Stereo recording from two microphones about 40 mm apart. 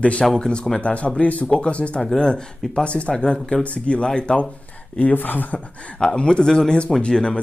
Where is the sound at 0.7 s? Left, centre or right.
Left.